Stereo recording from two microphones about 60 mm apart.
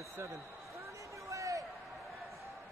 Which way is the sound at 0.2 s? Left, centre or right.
Right.